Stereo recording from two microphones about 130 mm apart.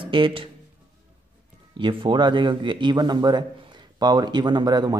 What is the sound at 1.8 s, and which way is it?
A man's voice, 40° right (ahead or behind).